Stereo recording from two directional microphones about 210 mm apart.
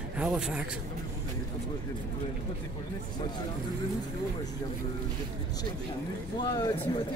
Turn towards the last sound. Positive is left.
turn(degrees=20)  # may be behind; listen again after turning